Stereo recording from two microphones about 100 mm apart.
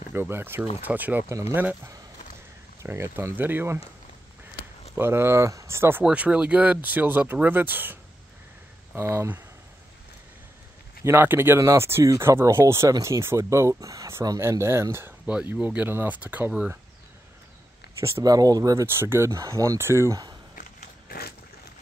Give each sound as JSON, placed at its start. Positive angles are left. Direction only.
{"t": 0.1, "sound": "speech", "side_deg": -20}
{"t": 2.8, "sound": "speech", "side_deg": -25}
{"t": 4.9, "sound": "speech", "side_deg": -25}
{"t": 6.0, "sound": "speech", "side_deg": -10}
{"t": 11.1, "sound": "speech", "side_deg": -25}
{"t": 15.2, "sound": "speech", "side_deg": -10}
{"t": 18.0, "sound": "speech", "side_deg": -35}
{"t": 18.9, "sound": "speech", "side_deg": -25}